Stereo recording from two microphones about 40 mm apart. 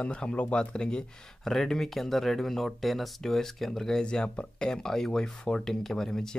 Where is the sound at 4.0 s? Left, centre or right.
Left.